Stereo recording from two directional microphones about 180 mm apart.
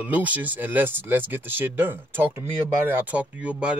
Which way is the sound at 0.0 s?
10° right (ahead or behind).